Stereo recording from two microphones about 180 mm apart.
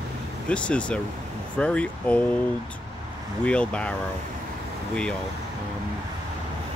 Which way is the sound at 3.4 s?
5° left (ahead or behind).